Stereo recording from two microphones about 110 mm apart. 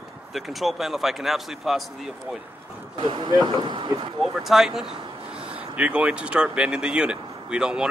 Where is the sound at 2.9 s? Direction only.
50° right (ahead or behind).